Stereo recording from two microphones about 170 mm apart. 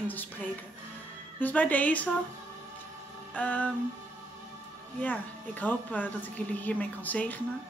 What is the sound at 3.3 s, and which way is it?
Speech, 10° left (ahead or behind).